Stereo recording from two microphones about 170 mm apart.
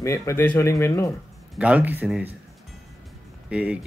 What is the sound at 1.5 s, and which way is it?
Speech, 5° right (ahead or behind).